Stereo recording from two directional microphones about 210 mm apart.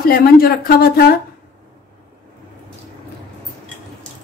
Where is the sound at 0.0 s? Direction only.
45° left (ahead or behind).